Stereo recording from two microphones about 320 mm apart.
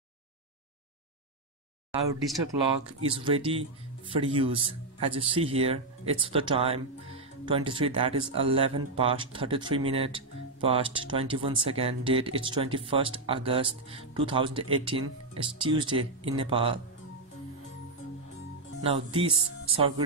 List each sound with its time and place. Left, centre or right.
3.1 s speech: centre
18.8 s speech: centre